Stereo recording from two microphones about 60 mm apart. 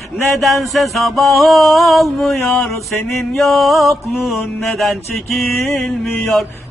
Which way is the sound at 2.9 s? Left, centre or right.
Centre.